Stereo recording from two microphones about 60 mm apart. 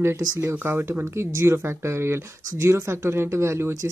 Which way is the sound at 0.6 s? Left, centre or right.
Right.